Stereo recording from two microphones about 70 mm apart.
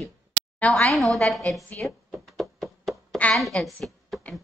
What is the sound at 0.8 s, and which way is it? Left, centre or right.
Speech, centre.